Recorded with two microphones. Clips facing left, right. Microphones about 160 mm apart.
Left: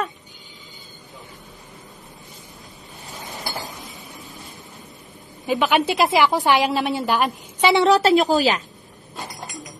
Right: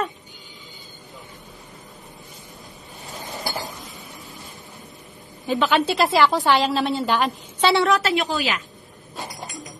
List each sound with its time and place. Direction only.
5.5 s a woman's voice: 15° left (ahead or behind)
7.9 s a woman's voice: 35° left (ahead or behind)
9.1 s chink: centre (ahead or behind)